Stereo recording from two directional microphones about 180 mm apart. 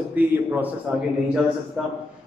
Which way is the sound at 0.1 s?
10° right (ahead or behind).